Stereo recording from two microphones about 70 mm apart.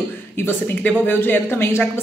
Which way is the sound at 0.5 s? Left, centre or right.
Left.